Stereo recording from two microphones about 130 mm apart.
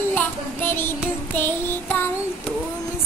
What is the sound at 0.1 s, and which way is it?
Child singing, 15° left (ahead or behind).